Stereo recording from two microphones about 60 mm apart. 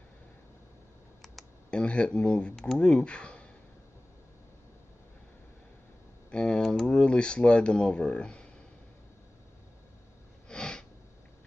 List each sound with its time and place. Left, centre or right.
1.7 s speech: centre
6.3 s computer keyboard: centre
7.1 s speech: centre
10.5 s a sound: centre